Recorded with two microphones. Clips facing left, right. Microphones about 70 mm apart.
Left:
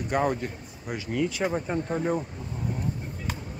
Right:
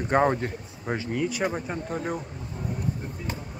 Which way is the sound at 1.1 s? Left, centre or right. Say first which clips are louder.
Left 2 dB; centre.